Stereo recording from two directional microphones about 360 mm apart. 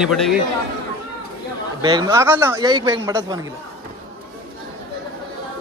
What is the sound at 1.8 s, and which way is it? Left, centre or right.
Speech, centre.